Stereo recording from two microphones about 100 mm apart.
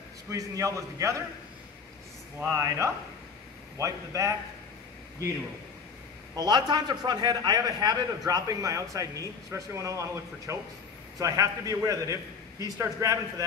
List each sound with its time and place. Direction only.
0.3 s a man's voice: 30° right (ahead or behind)
2.4 s a man's voice: 30° right (ahead or behind)
6.3 s a man's voice: 45° right (ahead or behind)